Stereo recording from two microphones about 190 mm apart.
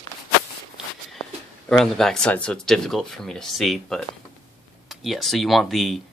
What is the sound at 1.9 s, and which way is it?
Speech, 5° left (ahead or behind).